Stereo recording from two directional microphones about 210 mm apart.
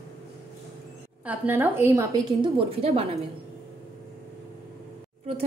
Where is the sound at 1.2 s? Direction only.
10° right (ahead or behind).